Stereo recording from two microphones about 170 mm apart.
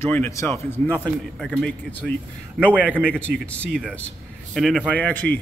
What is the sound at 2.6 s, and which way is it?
Speech, 10° right (ahead or behind).